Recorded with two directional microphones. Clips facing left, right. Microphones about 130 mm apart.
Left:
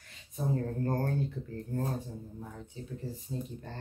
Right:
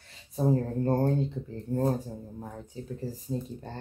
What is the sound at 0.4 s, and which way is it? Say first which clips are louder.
Speech: right 6 dB; 30° right (ahead or behind).